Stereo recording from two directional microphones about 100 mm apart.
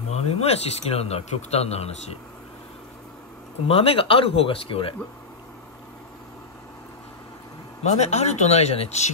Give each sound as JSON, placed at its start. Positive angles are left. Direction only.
{"t": 0.1, "sound": "speech", "side_deg": 90}
{"t": 3.6, "sound": "speech", "side_deg": 75}
{"t": 8.0, "sound": "speech", "side_deg": 90}